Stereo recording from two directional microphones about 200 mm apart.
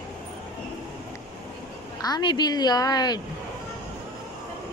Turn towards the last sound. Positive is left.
turn(degrees=20)  # may be behind; listen again after turning